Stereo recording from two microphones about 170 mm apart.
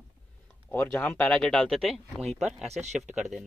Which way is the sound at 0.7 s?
10° left (ahead or behind).